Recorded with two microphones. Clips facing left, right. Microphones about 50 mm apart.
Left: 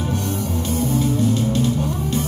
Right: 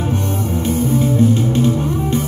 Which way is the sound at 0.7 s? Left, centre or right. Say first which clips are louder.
Right 4 dB; right.